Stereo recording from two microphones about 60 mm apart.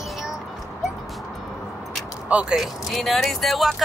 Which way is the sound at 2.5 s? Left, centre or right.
Centre.